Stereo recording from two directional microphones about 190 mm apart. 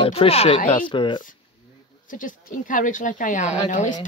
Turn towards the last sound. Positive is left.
turn(degrees=40)  # may be behind; listen again after turning